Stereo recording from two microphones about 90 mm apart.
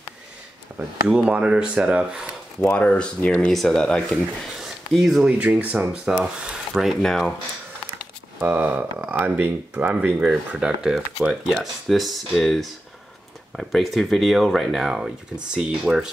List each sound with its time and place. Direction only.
0.7 s speech: 15° right (ahead or behind)
2.6 s speech: 15° left (ahead or behind)
4.6 s a sound: 5° right (ahead or behind)
5.4 s speech: 15° right (ahead or behind); by 7.3 s 5° left (ahead or behind)
8.4 s speech: 20° right (ahead or behind)